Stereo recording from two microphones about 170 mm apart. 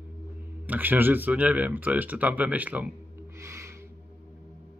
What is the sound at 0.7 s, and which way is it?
Speech, 10° right (ahead or behind).